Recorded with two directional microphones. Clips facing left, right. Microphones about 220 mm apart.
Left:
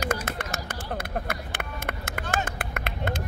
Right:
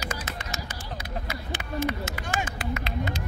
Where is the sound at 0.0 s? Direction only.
55° left (ahead or behind).